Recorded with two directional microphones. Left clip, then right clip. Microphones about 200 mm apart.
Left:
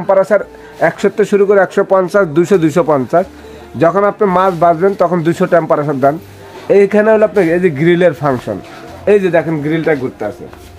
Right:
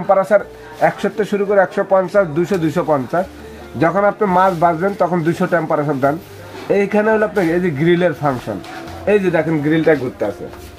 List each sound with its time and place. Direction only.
0.1 s speech: 50° left (ahead or behind)